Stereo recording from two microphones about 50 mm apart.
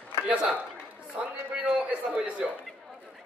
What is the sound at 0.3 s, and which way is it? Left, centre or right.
Speech, right.